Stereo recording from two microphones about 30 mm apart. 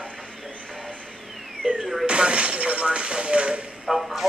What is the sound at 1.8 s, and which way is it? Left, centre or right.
Music, centre.